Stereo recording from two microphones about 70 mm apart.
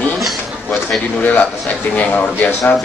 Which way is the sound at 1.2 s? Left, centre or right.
Left.